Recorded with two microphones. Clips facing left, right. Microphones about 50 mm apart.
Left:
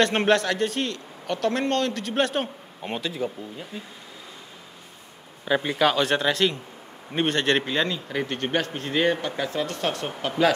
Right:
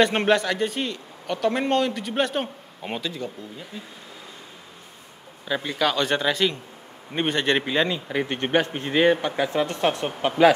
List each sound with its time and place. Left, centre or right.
0.0 s speech: centre
5.4 s a man's voice: centre
6.0 s a man's voice: centre